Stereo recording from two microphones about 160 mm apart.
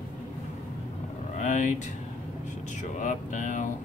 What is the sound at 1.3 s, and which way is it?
Vehicle, 50° left (ahead or behind).